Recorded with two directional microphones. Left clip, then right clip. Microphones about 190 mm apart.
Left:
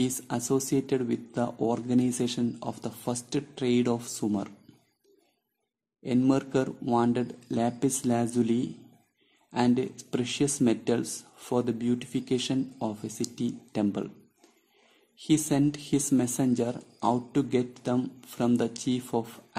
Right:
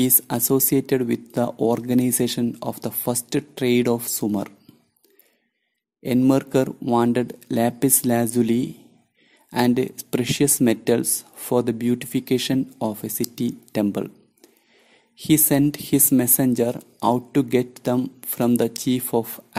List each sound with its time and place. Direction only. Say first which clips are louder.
0.0 s speech: right 7 dB; 45° right (ahead or behind)
6.0 s speech: right 7 dB; 40° right (ahead or behind)
15.1 s speech: right 7 dB; 45° right (ahead or behind)